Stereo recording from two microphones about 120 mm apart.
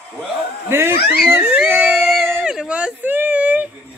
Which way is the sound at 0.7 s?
20° right (ahead or behind).